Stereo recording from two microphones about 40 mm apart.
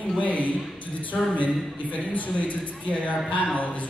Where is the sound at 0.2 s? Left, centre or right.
Left.